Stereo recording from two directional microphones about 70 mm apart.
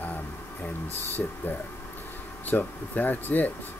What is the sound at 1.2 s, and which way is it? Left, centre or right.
Speech, left.